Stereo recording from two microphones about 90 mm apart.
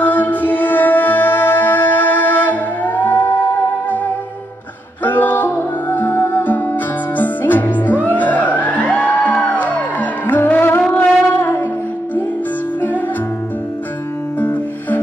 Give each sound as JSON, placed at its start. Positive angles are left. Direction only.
{"t": 0.0, "sound": "music", "side_deg": 20}
{"t": 5.0, "sound": "music", "side_deg": 20}
{"t": 14.4, "sound": "music", "side_deg": 20}